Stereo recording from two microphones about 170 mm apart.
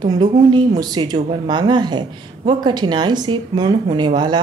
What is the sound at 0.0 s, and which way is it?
A woman's voice, 25° right (ahead or behind).